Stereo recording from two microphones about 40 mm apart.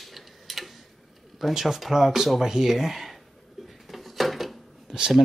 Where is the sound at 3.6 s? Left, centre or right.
Centre.